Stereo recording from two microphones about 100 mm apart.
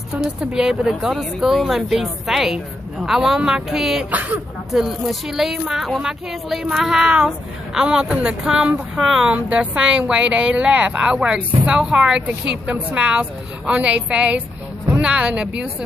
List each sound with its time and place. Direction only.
0.2 s speech: 10° right (ahead or behind)
4.1 s speech: 15° right (ahead or behind)
4.7 s speech: 5° right (ahead or behind)